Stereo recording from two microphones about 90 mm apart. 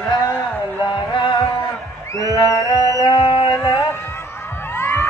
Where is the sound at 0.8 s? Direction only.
60° left (ahead or behind).